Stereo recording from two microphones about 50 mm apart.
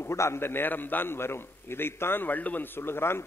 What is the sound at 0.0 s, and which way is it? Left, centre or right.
Speech, left.